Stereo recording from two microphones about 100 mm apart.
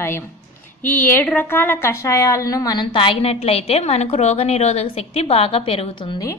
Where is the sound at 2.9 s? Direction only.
65° left (ahead or behind).